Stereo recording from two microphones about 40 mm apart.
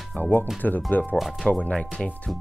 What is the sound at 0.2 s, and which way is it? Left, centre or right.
Speech, left.